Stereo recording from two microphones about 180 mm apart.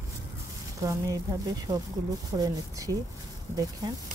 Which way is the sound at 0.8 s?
20° right (ahead or behind).